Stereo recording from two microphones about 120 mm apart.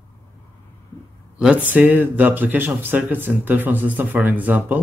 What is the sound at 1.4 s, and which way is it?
Speech, 10° right (ahead or behind).